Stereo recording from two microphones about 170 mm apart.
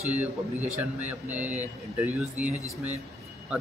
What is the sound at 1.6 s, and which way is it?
A man's voice, 10° right (ahead or behind).